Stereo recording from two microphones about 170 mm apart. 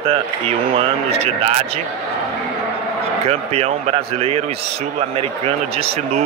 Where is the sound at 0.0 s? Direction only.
35° right (ahead or behind).